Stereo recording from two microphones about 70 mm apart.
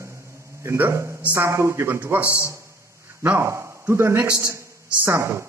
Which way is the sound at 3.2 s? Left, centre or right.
Right.